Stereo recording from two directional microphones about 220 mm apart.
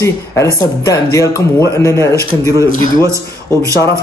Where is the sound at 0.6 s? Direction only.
15° left (ahead or behind).